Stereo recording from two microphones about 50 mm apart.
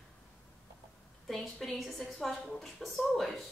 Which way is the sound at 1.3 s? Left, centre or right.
Centre.